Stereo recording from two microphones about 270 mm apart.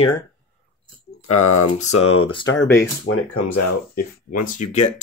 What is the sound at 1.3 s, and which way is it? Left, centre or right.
Speech, left.